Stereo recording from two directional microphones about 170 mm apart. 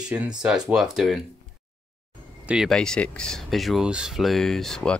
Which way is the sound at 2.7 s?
5° left (ahead or behind).